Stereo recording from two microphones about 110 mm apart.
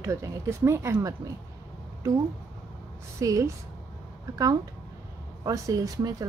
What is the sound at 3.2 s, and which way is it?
A woman's voice, 30° right (ahead or behind).